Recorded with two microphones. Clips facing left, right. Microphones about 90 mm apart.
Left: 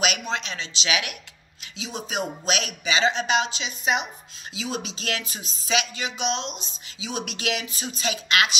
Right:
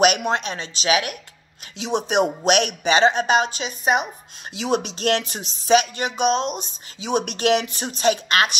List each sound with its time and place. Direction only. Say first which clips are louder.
0.0 s speech: right 8 dB; 50° right (ahead or behind)
1.8 s speech: right 10 dB; 60° right (ahead or behind); by 4.1 s 45° right (ahead or behind)
4.6 s speech: right 8 dB; 60° right (ahead or behind)